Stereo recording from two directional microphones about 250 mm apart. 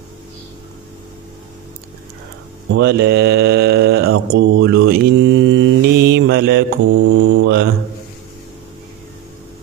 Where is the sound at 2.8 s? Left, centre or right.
Right.